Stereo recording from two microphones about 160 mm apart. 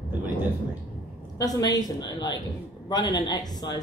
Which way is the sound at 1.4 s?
25° left (ahead or behind).